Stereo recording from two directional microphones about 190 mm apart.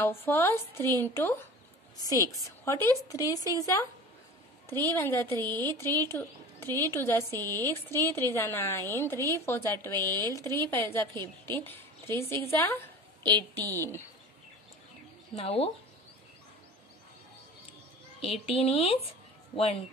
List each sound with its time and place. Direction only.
0.0 s a woman's voice: 15° left (ahead or behind)
15.3 s speech: 30° left (ahead or behind)
18.2 s speech: 30° left (ahead or behind)